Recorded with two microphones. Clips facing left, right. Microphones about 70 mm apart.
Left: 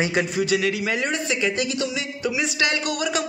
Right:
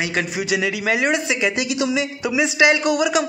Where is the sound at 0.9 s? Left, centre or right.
Right.